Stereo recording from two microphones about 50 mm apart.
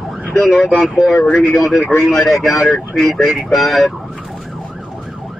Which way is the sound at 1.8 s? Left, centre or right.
Left.